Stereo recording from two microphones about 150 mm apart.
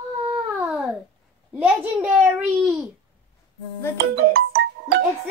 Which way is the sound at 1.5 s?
10° right (ahead or behind).